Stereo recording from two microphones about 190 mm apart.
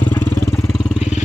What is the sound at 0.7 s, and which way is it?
Vehicle, centre (ahead or behind).